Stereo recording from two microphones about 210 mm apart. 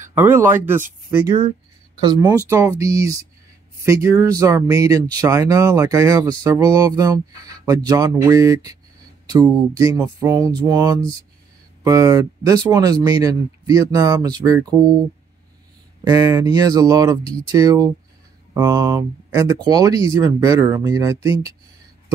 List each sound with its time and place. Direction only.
0.1 s speech: 10° right (ahead or behind)
16.0 s speech: 15° right (ahead or behind)